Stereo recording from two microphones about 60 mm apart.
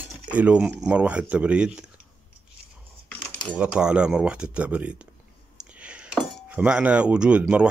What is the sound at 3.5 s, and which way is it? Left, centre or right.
Speech, centre.